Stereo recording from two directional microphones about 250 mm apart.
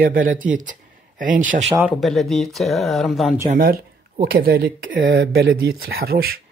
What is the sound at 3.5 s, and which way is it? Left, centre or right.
Speech, right.